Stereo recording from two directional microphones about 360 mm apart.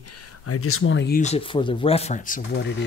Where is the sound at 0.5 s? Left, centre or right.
Left.